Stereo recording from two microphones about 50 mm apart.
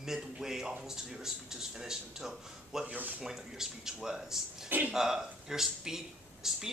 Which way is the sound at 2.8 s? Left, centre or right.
Right.